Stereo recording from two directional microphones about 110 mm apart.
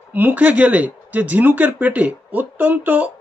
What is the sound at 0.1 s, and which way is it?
Speech, 15° right (ahead or behind).